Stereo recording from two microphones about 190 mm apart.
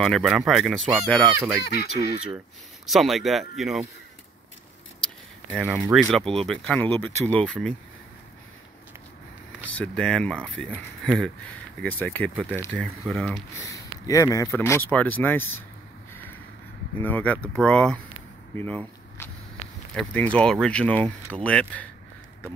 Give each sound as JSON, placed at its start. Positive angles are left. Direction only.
{"t": 0.0, "sound": "speech", "side_deg": 5}
{"t": 1.6, "sound": "speech", "side_deg": 55}
{"t": 2.0, "sound": "speech", "side_deg": -10}
{"t": 5.0, "sound": "a sound", "side_deg": 5}
{"t": 5.5, "sound": "speech", "side_deg": -10}
{"t": 6.0, "sound": "speech", "side_deg": 5}
{"t": 9.7, "sound": "speech", "side_deg": 5}
{"t": 13.6, "sound": "speech", "side_deg": 15}
{"t": 16.1, "sound": "vehicle", "side_deg": 10}
{"t": 17.0, "sound": "speech", "side_deg": 10}